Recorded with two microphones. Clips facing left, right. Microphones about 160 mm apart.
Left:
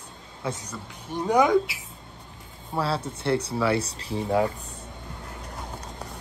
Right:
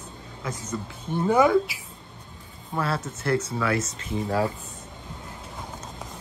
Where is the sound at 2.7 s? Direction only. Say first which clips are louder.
Left 1 dB; 5° left (ahead or behind).